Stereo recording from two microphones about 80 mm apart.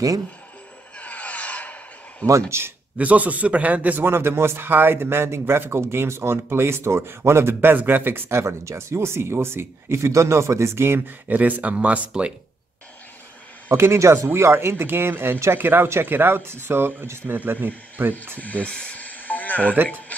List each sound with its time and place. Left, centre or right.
0.9 s a sound: centre
2.5 s a man's voice: right
3.0 s a man's voice: centre
13.7 s a man's voice: right
18.4 s snake: centre